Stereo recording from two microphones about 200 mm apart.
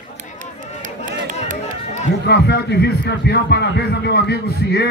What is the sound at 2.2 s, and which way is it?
Speech, 55° left (ahead or behind).